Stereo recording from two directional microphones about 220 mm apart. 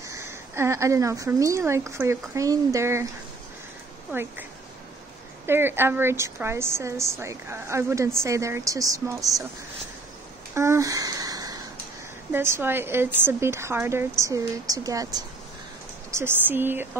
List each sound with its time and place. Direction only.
0.1 s speech: 10° right (ahead or behind)
4.1 s a woman's voice: 10° right (ahead or behind)
5.5 s a woman's voice: 10° right (ahead or behind)
10.5 s a sound: 10° right (ahead or behind)
12.3 s a woman's voice: 10° right (ahead or behind)